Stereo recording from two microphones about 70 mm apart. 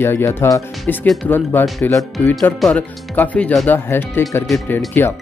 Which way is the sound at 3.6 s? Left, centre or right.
Left.